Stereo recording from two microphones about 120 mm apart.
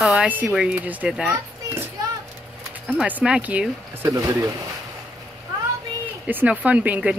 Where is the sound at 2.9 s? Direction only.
10° right (ahead or behind).